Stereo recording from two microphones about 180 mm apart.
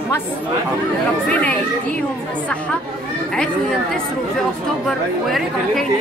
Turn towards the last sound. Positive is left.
turn(degrees=0)  # may be behind; listen again after turning